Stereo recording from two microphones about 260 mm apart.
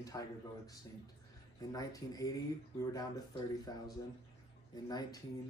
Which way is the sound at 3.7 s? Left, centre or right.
Centre.